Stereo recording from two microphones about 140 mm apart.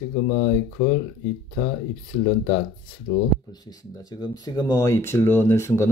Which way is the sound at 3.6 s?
30° left (ahead or behind).